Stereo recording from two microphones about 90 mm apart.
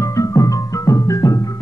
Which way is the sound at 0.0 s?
35° left (ahead or behind).